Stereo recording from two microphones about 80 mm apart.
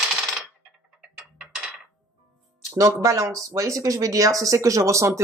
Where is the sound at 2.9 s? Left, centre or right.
Right.